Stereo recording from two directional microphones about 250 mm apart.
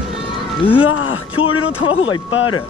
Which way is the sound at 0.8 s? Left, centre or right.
Left.